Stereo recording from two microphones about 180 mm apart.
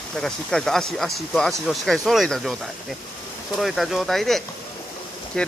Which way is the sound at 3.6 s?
Centre (ahead or behind).